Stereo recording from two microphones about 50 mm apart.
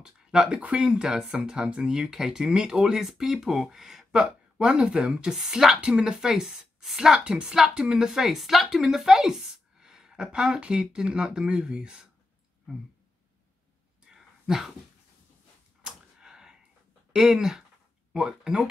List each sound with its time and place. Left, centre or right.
0.0 s speech: centre
4.6 s speech: centre
5.8 s speech: centre
14.1 s a sound: centre
15.8 s a sound: centre
17.1 s speech: centre